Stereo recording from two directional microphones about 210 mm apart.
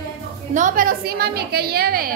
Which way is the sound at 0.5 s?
40° right (ahead or behind).